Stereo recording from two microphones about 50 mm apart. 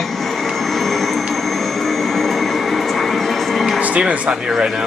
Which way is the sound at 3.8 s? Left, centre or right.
Right.